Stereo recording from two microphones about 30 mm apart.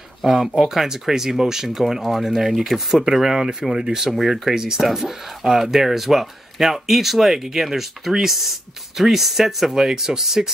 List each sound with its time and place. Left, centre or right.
0.2 s speech: centre